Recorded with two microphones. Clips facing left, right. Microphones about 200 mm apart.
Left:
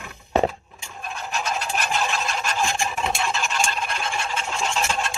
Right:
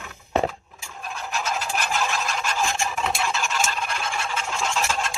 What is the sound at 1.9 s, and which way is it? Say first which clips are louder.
Fowl: left 1 dB; 15° left (ahead or behind).